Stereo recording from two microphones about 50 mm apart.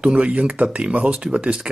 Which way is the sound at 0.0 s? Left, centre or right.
Right.